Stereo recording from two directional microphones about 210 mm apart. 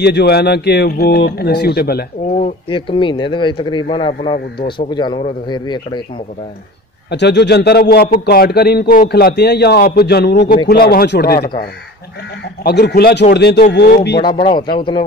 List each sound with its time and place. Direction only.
0.0 s a man's voice: 50° left (ahead or behind)
2.3 s speech: 30° left (ahead or behind)
7.1 s a man's voice: 55° left (ahead or behind)
12.6 s a man's voice: 50° left (ahead or behind)
14.2 s speech: 20° left (ahead or behind)